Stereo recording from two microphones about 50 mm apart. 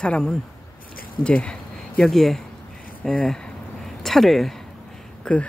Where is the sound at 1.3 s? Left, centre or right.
Left.